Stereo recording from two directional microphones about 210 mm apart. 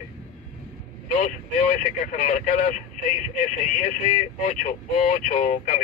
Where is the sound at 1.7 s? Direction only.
35° left (ahead or behind).